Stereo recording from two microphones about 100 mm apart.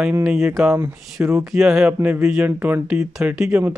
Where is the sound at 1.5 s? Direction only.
5° right (ahead or behind).